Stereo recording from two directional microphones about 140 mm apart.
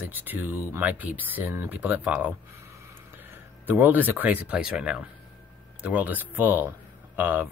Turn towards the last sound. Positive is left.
turn(degrees=-15)  # may be behind; listen again after turning